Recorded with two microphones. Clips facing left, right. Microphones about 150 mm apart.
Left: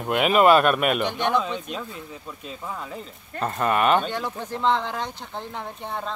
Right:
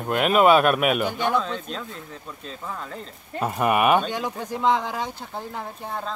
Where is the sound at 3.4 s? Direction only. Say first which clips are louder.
Right 1 dB; 10° right (ahead or behind).